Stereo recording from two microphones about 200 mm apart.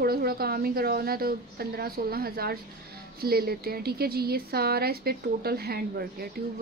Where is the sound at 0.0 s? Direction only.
50° right (ahead or behind).